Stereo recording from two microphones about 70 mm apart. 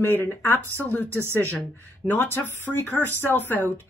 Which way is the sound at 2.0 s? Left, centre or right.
Left.